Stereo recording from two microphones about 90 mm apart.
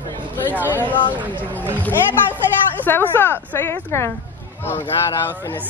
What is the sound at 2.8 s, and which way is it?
A woman's voice, 25° left (ahead or behind).